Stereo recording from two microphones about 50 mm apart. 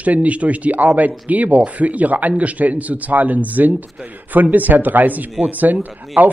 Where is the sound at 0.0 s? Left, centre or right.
Right.